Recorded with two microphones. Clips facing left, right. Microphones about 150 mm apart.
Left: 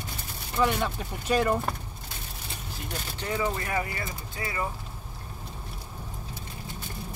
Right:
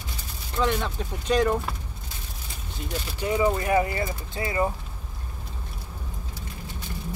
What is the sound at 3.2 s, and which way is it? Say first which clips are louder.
Speech: right 7 dB; 15° right (ahead or behind).